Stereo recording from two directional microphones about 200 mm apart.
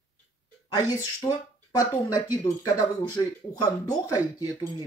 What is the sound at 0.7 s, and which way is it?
Speech, 20° left (ahead or behind).